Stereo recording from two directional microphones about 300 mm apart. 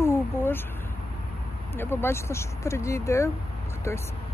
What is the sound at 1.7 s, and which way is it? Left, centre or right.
Speech, centre.